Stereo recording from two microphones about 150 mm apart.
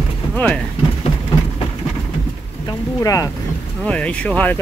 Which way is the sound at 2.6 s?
20° left (ahead or behind).